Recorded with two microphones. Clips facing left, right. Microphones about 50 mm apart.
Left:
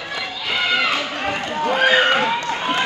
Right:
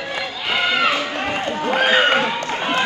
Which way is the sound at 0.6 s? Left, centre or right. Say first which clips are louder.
Right 1 dB; right.